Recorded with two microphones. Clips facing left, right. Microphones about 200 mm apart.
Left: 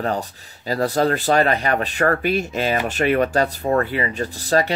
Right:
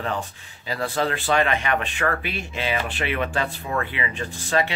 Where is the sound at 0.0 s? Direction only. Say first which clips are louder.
Left 5 dB; 40° left (ahead or behind).